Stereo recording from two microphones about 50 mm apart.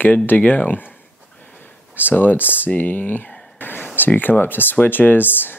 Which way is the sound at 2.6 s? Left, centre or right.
Left.